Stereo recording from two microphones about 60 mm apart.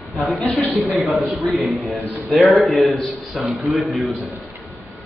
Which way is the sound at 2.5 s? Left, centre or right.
Centre.